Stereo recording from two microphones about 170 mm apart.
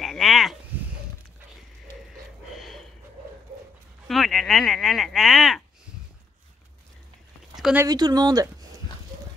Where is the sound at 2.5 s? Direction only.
Centre (ahead or behind).